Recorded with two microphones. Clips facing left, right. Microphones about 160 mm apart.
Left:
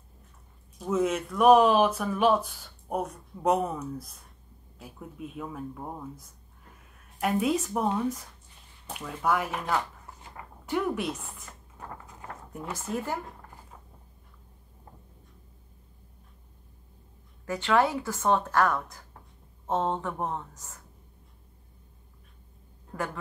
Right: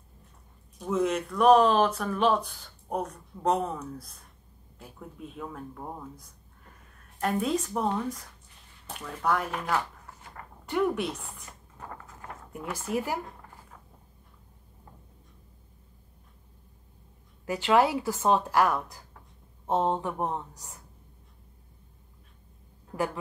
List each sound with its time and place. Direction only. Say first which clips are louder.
0.7 s a woman's voice: even; centre (ahead or behind)
11.9 s dog: even; 15° left (ahead or behind)
12.3 s a sound: right 1 dB; centre (ahead or behind)
12.7 s speech: right 2 dB; 10° right (ahead or behind)
17.5 s speech: right 2 dB; 15° right (ahead or behind)
22.9 s speech: right 4 dB; 15° right (ahead or behind)